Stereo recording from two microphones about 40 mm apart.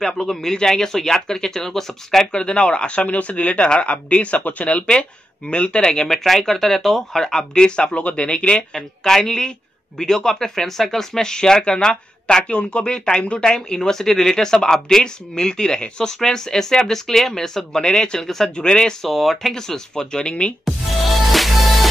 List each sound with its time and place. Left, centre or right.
0.0 s speech: centre
2.3 s speech: left
6.0 s speech: centre; by 8.6 s left
8.7 s speech: centre
18.2 s speech: centre
18.6 s speech: centre
19.0 s speech: centre
19.5 s speech: centre
20.6 s music: centre